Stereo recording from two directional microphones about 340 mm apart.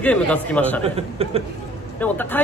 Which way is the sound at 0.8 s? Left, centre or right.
Centre.